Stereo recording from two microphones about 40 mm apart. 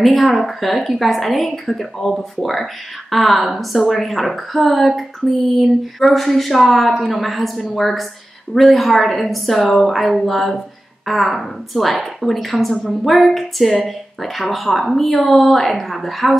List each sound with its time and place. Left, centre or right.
0.0 s a woman's voice: centre